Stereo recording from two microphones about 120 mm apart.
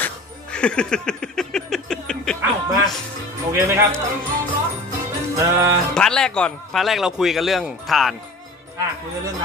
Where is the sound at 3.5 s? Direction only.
20° right (ahead or behind).